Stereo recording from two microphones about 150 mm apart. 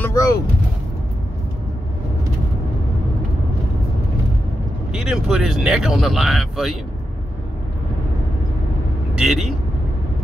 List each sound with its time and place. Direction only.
0.0 s a sound: 20° left (ahead or behind)
4.9 s speech: 5° right (ahead or behind)
9.1 s speech: centre (ahead or behind)